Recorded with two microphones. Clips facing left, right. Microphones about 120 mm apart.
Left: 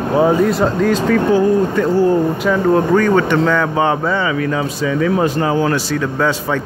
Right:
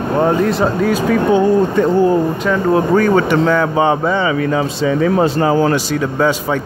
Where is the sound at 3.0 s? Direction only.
10° right (ahead or behind); by 5.8 s 30° right (ahead or behind).